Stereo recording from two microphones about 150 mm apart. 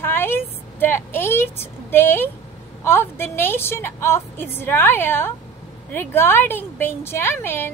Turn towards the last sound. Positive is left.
turn(degrees=15)  # may be behind; listen again after turning